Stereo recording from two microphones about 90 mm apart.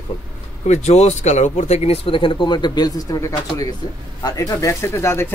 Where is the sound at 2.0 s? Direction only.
75° left (ahead or behind).